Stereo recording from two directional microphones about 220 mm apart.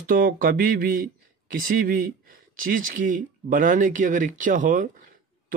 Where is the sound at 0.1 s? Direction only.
40° right (ahead or behind).